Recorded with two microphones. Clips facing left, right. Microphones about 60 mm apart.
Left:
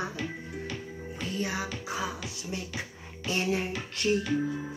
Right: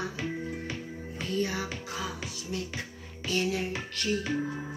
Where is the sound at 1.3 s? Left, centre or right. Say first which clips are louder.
Right 2 dB; centre.